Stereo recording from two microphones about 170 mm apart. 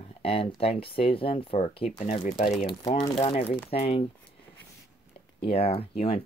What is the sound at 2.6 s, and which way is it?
Speech, 25° left (ahead or behind).